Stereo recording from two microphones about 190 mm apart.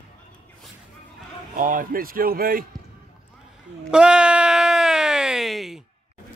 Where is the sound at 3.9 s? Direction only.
5° right (ahead or behind).